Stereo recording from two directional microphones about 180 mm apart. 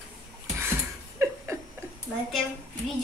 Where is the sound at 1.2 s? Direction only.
15° right (ahead or behind).